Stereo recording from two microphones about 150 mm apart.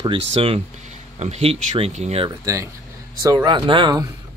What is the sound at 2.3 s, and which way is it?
A man's voice, 20° right (ahead or behind).